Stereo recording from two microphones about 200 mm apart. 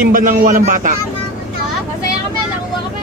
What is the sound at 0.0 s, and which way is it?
Speech, 45° right (ahead or behind).